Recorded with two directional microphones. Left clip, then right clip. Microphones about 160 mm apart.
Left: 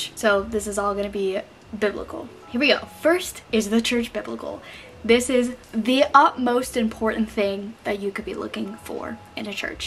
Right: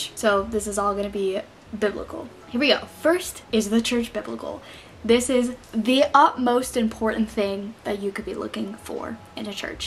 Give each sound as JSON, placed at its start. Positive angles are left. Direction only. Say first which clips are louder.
{"t": 0.2, "sound": "a woman's voice", "louder": "left 1 dB", "side_deg": 0}